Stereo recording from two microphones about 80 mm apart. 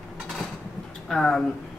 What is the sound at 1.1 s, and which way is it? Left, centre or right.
Speech, centre.